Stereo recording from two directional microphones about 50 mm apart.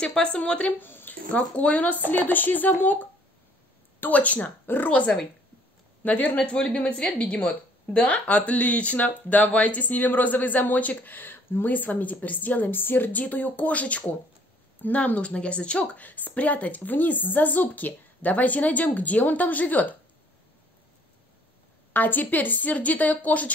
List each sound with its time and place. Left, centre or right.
0.0 s speech: left
0.7 s a sound: left
1.3 s speech: left
21.9 s speech: left